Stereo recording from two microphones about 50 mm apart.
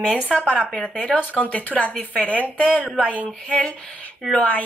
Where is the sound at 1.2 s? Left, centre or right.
Left.